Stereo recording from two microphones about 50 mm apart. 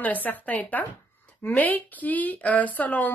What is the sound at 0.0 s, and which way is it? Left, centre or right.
Speech, left.